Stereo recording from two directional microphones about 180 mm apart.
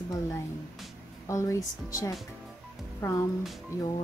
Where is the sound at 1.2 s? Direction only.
15° left (ahead or behind).